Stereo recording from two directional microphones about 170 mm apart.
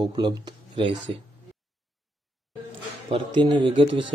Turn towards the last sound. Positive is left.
turn(degrees=-30)  # may be behind; listen again after turning